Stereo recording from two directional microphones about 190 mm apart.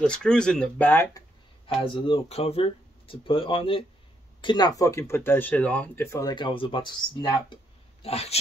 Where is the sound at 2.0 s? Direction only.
35° left (ahead or behind).